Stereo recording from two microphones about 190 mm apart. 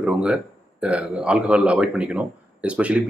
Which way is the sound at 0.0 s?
5° right (ahead or behind).